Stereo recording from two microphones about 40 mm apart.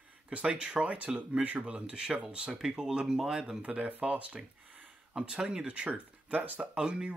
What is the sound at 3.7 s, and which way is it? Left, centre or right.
Speech, right.